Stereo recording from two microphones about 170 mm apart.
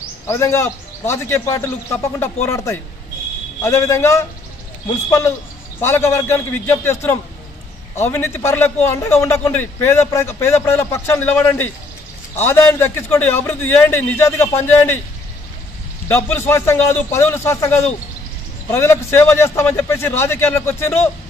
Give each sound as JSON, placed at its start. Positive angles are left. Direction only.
{"t": 0.3, "sound": "a man's voice", "side_deg": 15}
{"t": 16.1, "sound": "a man's voice", "side_deg": 15}